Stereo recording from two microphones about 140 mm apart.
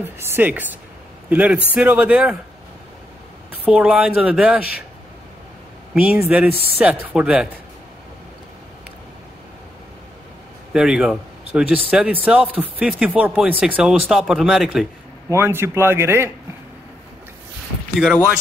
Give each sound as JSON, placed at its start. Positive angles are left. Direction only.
{"t": 0.0, "sound": "speech", "side_deg": -15}
{"t": 3.6, "sound": "speech", "side_deg": -10}
{"t": 5.9, "sound": "speech", "side_deg": -10}
{"t": 10.7, "sound": "speech", "side_deg": -5}
{"t": 15.2, "sound": "speech", "side_deg": -15}
{"t": 17.9, "sound": "speech", "side_deg": -5}